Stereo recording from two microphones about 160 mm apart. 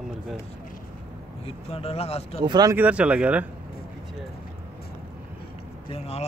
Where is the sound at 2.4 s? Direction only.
25° right (ahead or behind).